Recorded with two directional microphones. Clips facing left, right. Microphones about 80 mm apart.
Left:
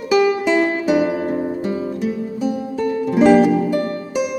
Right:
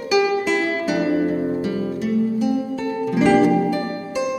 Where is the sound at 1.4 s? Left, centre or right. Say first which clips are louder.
Even; centre.